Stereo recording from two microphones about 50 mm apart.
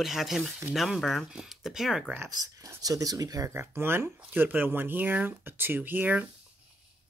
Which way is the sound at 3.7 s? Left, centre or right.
Right.